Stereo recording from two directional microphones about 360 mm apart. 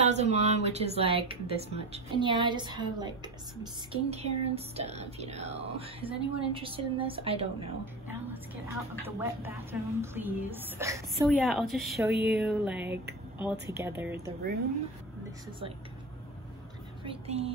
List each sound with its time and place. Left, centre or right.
0.0 s speech: centre
9.0 s a woman's voice: centre
17.0 s speech: centre